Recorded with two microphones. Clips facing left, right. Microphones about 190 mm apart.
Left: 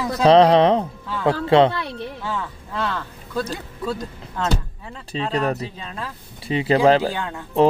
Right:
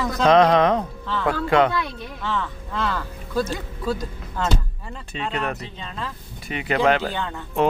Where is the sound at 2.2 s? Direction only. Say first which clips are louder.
Right 6 dB; 10° left (ahead or behind).